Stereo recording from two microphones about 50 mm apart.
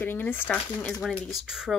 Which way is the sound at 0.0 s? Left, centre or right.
Left.